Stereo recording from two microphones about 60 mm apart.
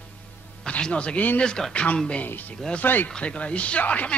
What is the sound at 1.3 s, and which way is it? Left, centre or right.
Speech, centre.